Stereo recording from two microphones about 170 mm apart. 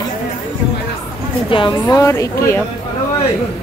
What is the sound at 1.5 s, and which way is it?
A woman's voice, 25° left (ahead or behind).